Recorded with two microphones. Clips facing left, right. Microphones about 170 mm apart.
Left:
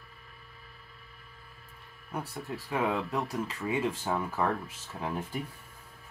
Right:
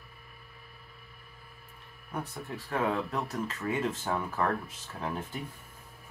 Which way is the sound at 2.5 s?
10° left (ahead or behind).